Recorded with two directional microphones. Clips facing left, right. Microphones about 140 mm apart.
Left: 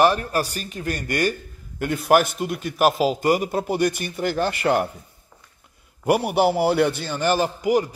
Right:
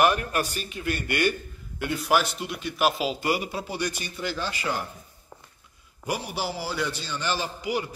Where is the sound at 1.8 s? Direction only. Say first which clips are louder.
Left 6 dB; 50° left (ahead or behind).